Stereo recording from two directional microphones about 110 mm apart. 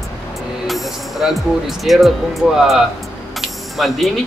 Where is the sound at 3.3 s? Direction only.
Centre (ahead or behind).